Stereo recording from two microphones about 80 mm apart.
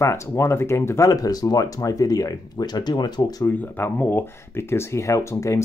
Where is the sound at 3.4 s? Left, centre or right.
Left.